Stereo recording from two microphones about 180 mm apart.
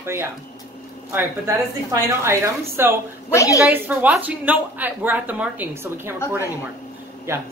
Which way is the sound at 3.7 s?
10° right (ahead or behind).